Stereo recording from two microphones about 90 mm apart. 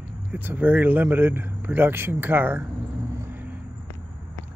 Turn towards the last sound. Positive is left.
turn(degrees=-25)  # may be behind; listen again after turning